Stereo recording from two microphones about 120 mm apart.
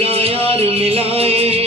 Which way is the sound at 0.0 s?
55° right (ahead or behind).